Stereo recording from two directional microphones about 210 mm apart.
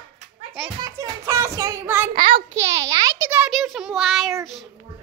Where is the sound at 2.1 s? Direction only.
30° right (ahead or behind).